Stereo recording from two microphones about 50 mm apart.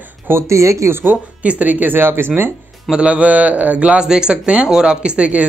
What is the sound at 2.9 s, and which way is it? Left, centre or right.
Speech, right.